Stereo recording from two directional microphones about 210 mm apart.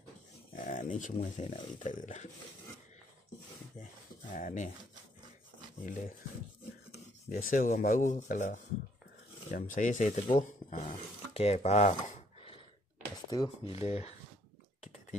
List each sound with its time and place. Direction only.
0.6 s speech: 35° left (ahead or behind)
4.3 s speech: 35° left (ahead or behind)
5.9 s speech: 40° left (ahead or behind)
6.9 s rub: 40° left (ahead or behind)
9.5 s speech: 40° left (ahead or behind)
13.3 s speech: 25° left (ahead or behind)
14.8 s a sound: 35° left (ahead or behind)